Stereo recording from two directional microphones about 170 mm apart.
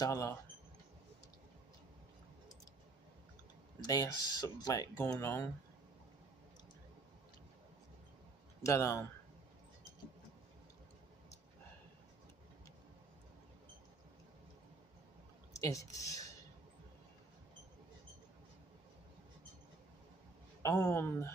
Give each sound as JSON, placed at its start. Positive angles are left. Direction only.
{"t": 0.0, "sound": "a man's voice", "side_deg": 15}
{"t": 3.8, "sound": "speech", "side_deg": 20}
{"t": 8.6, "sound": "a man's voice", "side_deg": 15}
{"t": 15.6, "sound": "speech", "side_deg": 20}
{"t": 20.6, "sound": "a man's voice", "side_deg": 15}